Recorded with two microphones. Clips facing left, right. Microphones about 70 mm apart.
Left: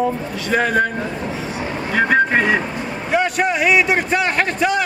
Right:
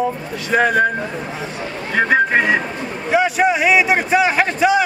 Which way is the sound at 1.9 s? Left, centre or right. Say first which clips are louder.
Right 1 dB; centre.